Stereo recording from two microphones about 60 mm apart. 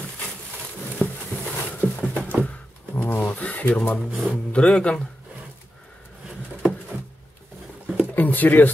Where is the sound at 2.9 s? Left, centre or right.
Left.